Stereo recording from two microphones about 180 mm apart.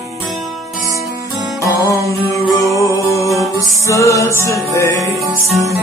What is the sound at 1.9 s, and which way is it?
Music, 20° left (ahead or behind).